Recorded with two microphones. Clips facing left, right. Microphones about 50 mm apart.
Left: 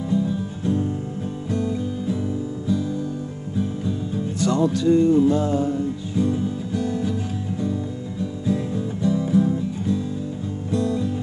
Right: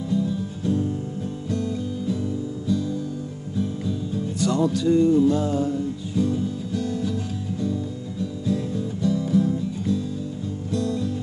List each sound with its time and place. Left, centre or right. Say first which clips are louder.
0.1 s music: left 1 dB; left
3.5 s music: left 1 dB; left